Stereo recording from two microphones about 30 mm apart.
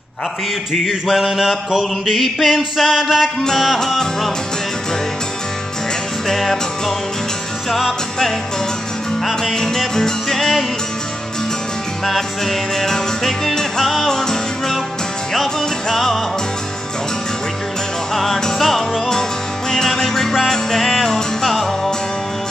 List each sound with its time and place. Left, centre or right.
1.1 s mantra: centre
2.4 s music: centre
3.0 s mantra: centre
3.4 s music: centre
6.2 s music: centre
9.2 s music: centre
12.1 s music: centre
15.9 s music: centre
18.1 s music: centre